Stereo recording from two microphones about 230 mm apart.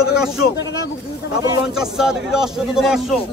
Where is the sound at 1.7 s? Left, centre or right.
Centre.